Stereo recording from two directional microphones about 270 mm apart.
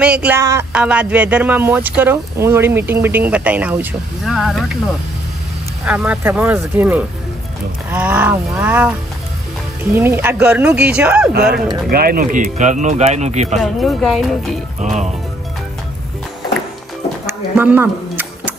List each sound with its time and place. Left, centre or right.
0.0 s speech: centre
5.9 s speech: centre
11.3 s speech: right
13.6 s speech: centre
14.8 s speech: right
17.3 s a sound: centre